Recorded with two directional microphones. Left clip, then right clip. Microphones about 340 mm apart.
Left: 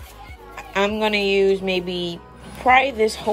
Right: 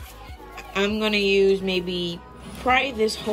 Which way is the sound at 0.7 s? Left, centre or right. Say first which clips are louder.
Left 3 dB; centre.